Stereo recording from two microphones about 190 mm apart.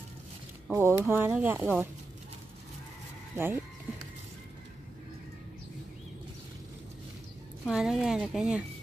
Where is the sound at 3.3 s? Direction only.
15° right (ahead or behind).